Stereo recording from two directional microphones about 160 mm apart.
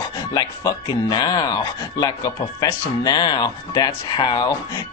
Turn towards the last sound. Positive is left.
turn(degrees=25)  # may be behind; listen again after turning